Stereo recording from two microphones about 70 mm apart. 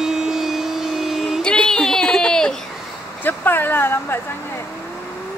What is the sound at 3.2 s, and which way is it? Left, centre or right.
Speech, left.